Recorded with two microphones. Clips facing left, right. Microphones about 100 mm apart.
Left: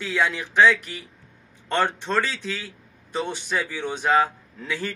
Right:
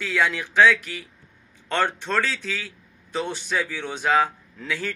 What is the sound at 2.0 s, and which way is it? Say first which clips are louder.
A man's voice: even; centre (ahead or behind).